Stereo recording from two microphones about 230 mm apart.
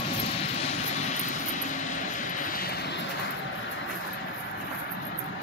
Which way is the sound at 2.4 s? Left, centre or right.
Left.